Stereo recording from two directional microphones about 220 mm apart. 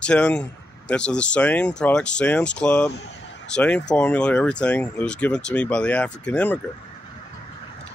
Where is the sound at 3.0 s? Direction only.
55° left (ahead or behind).